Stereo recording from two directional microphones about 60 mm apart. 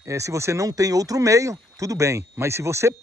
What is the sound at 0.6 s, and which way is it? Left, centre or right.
Speech, right.